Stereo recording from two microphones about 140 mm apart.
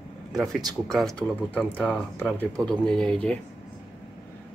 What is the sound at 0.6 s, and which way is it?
Speech, 30° right (ahead or behind).